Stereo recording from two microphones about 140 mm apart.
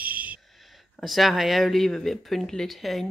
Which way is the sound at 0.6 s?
Centre (ahead or behind).